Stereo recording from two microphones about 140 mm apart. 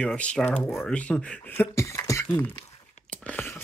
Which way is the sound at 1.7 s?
20° left (ahead or behind).